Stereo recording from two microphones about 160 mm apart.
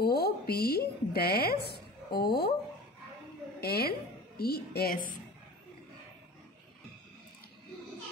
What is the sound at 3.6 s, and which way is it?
A woman's voice, 80° left.